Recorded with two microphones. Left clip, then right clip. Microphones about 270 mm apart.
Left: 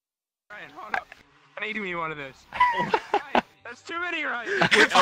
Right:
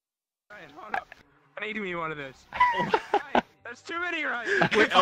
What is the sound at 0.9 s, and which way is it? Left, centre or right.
Speech, centre.